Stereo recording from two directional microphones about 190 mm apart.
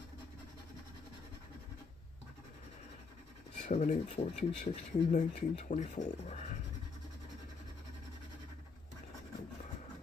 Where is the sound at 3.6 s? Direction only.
40° left (ahead or behind).